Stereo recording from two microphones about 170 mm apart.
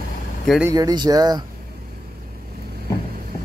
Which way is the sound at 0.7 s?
20° right (ahead or behind).